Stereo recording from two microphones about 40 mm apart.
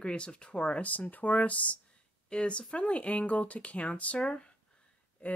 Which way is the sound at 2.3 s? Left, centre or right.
Left.